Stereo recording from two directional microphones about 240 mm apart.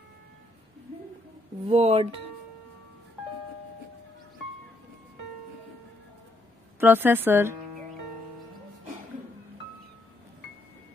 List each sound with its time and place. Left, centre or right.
1.7 s speech: right
6.8 s a woman's voice: centre